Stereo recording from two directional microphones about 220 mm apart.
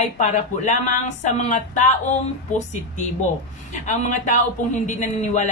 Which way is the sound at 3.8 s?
35° left (ahead or behind).